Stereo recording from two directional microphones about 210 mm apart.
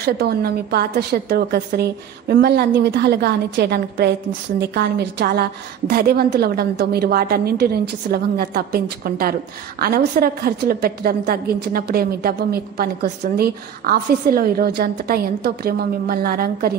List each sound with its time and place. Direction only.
0.0 s a woman's voice: 50° right (ahead or behind)